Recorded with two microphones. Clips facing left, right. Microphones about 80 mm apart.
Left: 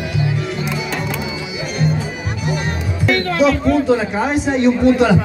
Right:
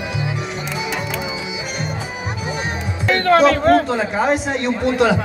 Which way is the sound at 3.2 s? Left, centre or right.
Right.